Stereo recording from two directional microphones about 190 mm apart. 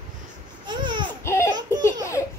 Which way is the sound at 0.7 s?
25° right (ahead or behind).